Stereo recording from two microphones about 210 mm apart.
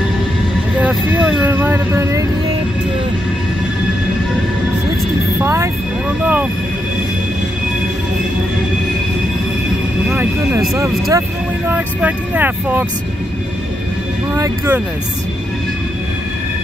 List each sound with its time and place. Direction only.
0.7 s speech: 5° right (ahead or behind)
5.4 s speech: 10° right (ahead or behind)
10.0 s speech: 5° right (ahead or behind)
14.3 s speech: 15° right (ahead or behind)